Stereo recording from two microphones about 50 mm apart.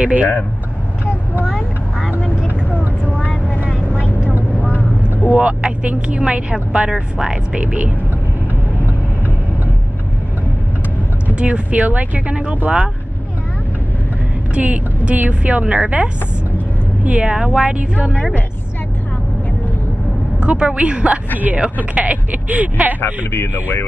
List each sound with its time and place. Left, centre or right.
0.0 s speech: right
3.3 s vehicle: left
5.4 s speech: right
7.5 s speech: right
11.3 s speech: right
14.5 s speech: right
17.0 s speech: right
20.3 s speech: centre
22.9 s speech: left